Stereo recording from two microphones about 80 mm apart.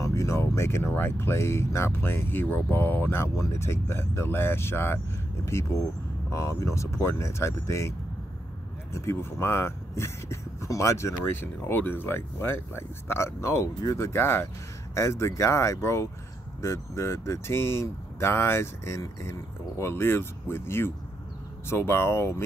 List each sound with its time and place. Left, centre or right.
0.0 s speech: left
8.9 s speech: left